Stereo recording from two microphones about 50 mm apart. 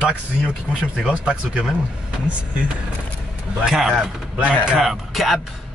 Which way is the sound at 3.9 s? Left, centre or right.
Right.